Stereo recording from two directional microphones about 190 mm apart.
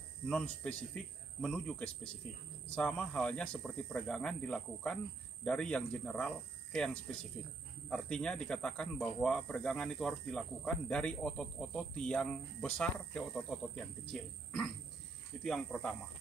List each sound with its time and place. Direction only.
0.3 s speech: 5° left (ahead or behind)